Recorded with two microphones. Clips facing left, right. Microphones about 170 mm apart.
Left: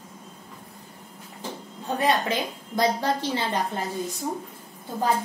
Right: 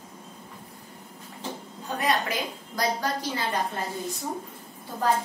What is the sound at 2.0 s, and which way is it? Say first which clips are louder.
A woman's voice: left 3 dB; 25° left (ahead or behind).